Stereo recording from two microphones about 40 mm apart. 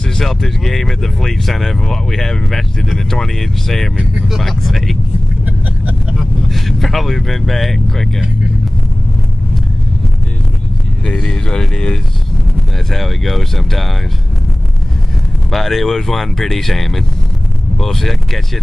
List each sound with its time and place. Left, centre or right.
0.2 s speech: centre
6.5 s speech: centre
11.1 s speech: centre
12.9 s speech: centre
15.5 s speech: centre